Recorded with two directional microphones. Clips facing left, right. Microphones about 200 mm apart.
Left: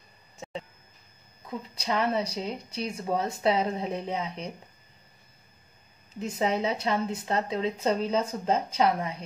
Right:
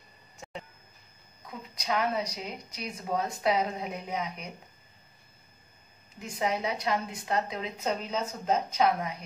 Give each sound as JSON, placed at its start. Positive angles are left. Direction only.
{"t": 1.8, "sound": "speech", "side_deg": 30}
{"t": 6.3, "sound": "speech", "side_deg": 25}